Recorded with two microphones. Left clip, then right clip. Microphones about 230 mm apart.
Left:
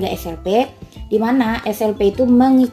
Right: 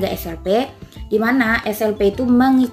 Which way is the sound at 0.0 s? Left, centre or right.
Centre.